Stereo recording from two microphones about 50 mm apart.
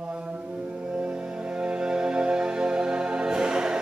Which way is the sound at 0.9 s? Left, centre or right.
Right.